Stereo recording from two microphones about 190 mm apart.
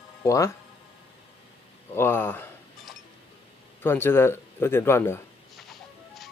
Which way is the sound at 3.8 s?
10° left (ahead or behind).